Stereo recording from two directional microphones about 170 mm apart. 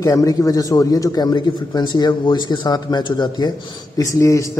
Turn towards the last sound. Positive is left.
turn(degrees=20)  # may be behind; listen again after turning